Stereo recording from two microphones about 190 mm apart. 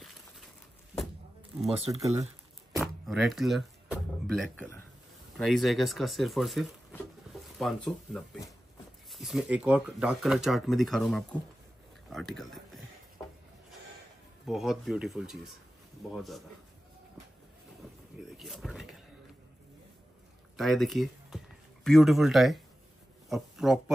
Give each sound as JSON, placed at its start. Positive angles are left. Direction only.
{"t": 1.9, "sound": "speech", "side_deg": -15}
{"t": 3.1, "sound": "speech", "side_deg": 0}
{"t": 12.1, "sound": "a sound", "side_deg": 0}
{"t": 14.4, "sound": "speech", "side_deg": 0}
{"t": 18.4, "sound": "power windows", "side_deg": 0}
{"t": 20.5, "sound": "speech", "side_deg": 0}
{"t": 23.2, "sound": "a sound", "side_deg": 0}